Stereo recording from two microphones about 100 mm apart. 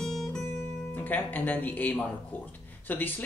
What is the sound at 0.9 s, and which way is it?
Speech, 15° left (ahead or behind).